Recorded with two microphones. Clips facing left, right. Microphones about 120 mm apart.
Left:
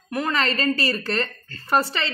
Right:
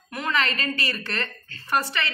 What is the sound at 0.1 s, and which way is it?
A man's voice, 35° left (ahead or behind).